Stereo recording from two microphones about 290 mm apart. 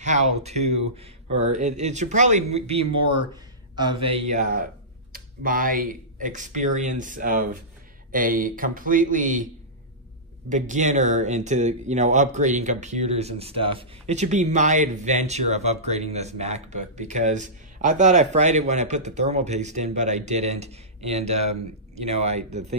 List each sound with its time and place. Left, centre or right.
0.0 s speech: right
10.5 s speech: right